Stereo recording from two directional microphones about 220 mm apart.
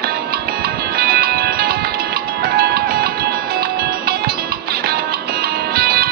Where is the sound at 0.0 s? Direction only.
45° right (ahead or behind).